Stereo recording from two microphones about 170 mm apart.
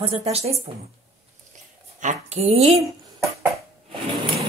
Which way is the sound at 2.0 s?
40° right (ahead or behind).